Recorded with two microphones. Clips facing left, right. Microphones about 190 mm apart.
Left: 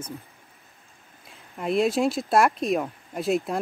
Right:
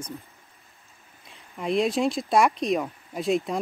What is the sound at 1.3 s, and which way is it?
Speech, centre (ahead or behind).